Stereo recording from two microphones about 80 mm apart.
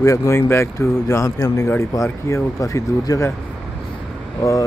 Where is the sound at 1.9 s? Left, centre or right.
Left.